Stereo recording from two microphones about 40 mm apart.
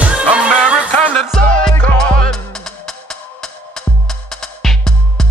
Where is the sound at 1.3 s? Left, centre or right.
Centre.